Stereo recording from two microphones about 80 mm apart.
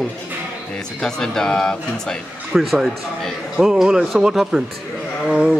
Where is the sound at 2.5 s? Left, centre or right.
Centre.